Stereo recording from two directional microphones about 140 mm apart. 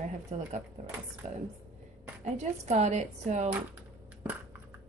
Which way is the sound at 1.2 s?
55° right (ahead or behind).